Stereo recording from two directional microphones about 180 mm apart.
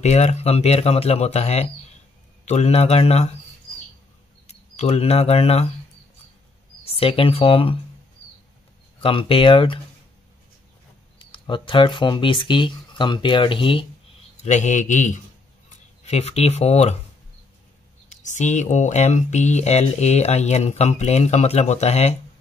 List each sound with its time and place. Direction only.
0.0 s speech: 35° left (ahead or behind)
4.5 s speech: 35° left (ahead or behind)
7.0 s speech: 30° left (ahead or behind)
9.0 s speech: 30° left (ahead or behind)
11.1 s speech: 25° left (ahead or behind)
14.4 s a man's voice: 40° left (ahead or behind)
18.2 s speech: 40° left (ahead or behind)